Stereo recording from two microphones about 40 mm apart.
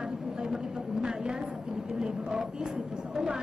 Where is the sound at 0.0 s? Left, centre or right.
Centre.